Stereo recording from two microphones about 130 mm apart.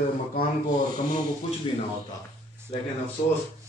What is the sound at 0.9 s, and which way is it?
Speech, 90° right.